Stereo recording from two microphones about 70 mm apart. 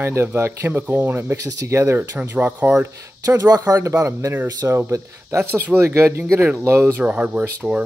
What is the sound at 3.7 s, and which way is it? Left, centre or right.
Speech, right.